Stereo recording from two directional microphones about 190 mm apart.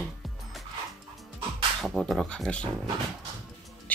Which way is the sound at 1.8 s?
Centre (ahead or behind).